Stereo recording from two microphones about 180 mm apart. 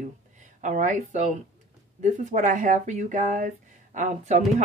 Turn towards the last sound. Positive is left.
turn(degrees=-45)  # may be behind; listen again after turning